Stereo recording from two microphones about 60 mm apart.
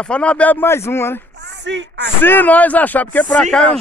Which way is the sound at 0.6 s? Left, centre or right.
Left.